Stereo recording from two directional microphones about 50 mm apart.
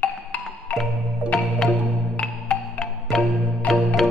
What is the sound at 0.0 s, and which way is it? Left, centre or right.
Music, left.